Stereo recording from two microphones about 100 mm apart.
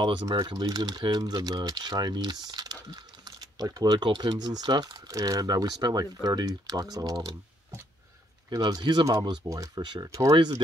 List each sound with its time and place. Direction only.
0.0 s speech: 45° right (ahead or behind)
8.5 s speech: 40° right (ahead or behind)
9.5 s speech: 35° right (ahead or behind)